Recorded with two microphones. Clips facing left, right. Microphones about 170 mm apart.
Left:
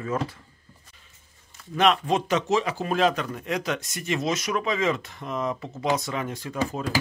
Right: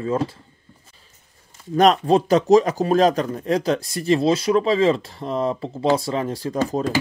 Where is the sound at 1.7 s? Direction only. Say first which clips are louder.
Right 6 dB; 40° right (ahead or behind).